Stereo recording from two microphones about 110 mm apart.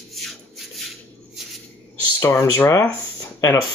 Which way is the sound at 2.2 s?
20° left (ahead or behind).